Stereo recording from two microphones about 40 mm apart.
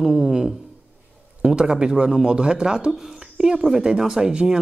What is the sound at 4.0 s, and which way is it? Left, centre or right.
Speech, centre.